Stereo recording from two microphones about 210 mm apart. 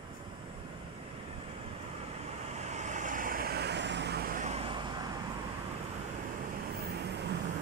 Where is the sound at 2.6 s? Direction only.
35° right (ahead or behind).